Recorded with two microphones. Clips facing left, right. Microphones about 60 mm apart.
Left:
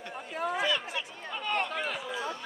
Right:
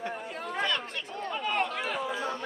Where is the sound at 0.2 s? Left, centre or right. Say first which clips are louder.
Left 7 dB; centre.